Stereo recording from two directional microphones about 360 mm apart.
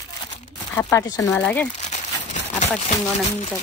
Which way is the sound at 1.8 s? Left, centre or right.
Centre.